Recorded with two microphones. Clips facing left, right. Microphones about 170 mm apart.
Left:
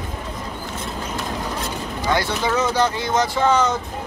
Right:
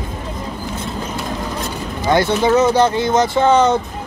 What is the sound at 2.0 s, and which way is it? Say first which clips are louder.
Speech: right 7 dB; 25° right (ahead or behind).